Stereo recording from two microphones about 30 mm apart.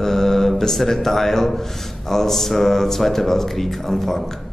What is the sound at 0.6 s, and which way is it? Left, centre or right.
Speech, centre.